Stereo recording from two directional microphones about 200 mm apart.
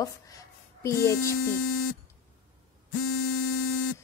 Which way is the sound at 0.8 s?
15° left (ahead or behind).